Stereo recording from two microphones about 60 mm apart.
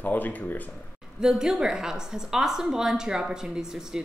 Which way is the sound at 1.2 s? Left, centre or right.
Centre.